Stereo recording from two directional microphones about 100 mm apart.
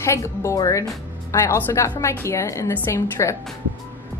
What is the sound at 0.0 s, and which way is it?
A woman's voice, 30° left (ahead or behind).